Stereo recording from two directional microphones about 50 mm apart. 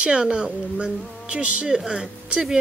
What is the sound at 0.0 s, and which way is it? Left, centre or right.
A woman's voice, centre.